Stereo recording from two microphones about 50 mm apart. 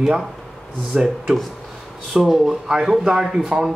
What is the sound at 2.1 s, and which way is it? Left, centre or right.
Speech, centre.